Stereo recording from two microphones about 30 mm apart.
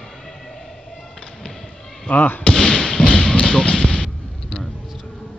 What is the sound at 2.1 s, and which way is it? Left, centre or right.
Speech, left.